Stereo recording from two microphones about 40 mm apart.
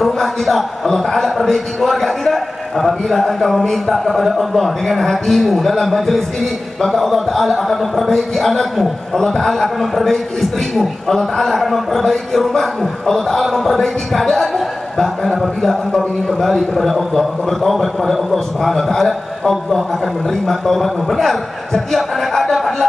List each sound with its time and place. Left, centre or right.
0.0 s a man's voice: centre